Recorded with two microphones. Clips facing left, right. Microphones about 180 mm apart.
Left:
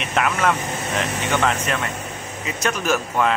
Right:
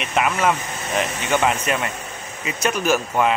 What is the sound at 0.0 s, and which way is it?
Speech, 5° right (ahead or behind).